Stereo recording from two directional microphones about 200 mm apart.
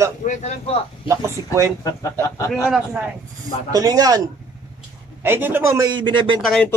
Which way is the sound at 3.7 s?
20° right (ahead or behind).